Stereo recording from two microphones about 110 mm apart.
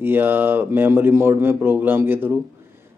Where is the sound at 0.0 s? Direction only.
20° right (ahead or behind).